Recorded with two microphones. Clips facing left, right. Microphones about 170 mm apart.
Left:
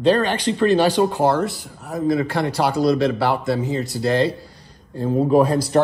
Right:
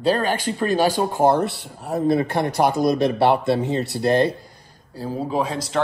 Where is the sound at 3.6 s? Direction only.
65° right (ahead or behind).